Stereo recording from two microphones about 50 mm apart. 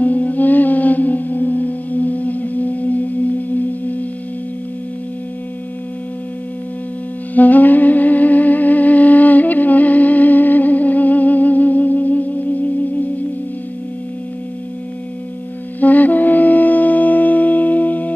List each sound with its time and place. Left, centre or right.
0.0 s music: left
7.3 s music: left
15.8 s music: left